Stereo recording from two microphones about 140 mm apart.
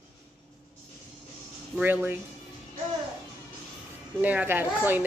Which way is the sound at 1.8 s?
15° right (ahead or behind).